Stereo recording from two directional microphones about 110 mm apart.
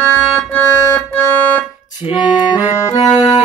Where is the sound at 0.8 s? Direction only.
20° left (ahead or behind).